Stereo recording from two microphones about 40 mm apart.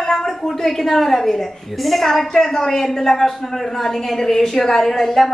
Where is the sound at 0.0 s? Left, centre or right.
Centre.